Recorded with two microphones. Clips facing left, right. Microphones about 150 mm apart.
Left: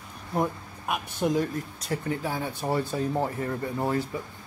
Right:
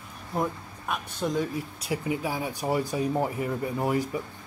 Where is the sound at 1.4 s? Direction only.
10° right (ahead or behind).